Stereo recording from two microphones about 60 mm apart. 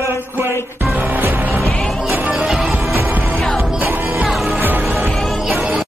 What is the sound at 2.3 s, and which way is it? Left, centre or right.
Music, centre.